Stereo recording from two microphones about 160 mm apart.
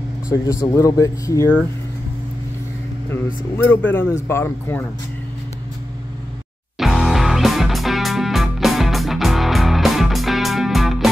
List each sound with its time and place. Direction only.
0.3 s speech: 20° left (ahead or behind)
3.1 s speech: 15° left (ahead or behind)
6.8 s music: centre (ahead or behind)